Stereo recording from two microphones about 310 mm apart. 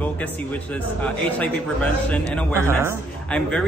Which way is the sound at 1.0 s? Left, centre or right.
Centre.